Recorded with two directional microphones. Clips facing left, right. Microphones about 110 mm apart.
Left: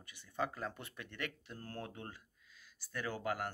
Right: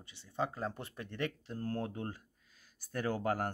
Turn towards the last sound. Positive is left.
turn(degrees=-40)  # may be behind; listen again after turning